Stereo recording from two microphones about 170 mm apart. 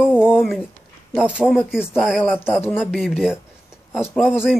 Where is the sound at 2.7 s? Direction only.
5° right (ahead or behind).